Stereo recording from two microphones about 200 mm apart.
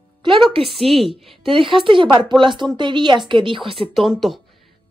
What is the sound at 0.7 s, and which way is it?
Speech, centre (ahead or behind).